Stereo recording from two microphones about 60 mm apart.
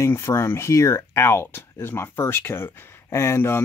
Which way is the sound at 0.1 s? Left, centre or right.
Left.